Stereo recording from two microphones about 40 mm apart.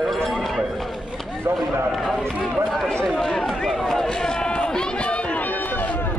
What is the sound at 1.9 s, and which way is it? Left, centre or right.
Speech, centre.